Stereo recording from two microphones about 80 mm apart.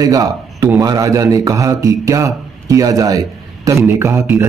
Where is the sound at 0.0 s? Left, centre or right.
Right.